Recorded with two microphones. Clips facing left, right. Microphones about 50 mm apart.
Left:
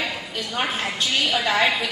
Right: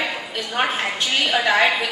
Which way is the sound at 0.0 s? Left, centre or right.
Centre.